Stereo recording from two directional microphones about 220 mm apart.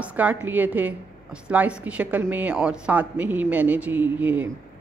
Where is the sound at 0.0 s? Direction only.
5° right (ahead or behind).